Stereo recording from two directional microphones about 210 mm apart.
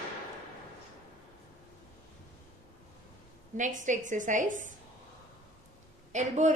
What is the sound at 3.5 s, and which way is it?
A woman's voice, 35° right (ahead or behind).